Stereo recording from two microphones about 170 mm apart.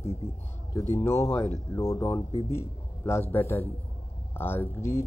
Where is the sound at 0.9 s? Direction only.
15° left (ahead or behind).